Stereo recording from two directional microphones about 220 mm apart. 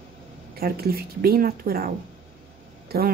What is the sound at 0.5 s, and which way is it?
Speech, 45° right (ahead or behind).